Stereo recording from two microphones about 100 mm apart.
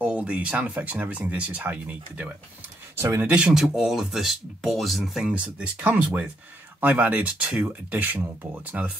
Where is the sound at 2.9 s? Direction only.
25° right (ahead or behind).